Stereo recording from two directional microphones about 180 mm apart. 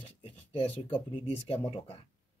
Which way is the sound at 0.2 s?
30° left (ahead or behind).